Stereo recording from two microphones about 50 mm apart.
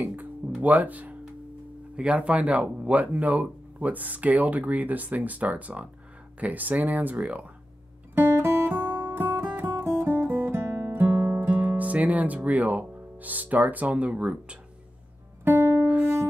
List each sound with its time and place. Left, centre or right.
0.0 s music: right
2.0 s speech: right
8.1 s music: right
10.8 s guitar: right
11.5 s speech: right
15.4 s music: right